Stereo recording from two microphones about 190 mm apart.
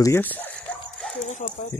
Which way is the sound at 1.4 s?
30° left (ahead or behind).